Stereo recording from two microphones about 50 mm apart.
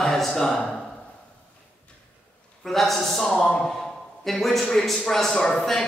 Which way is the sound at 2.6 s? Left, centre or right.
Centre.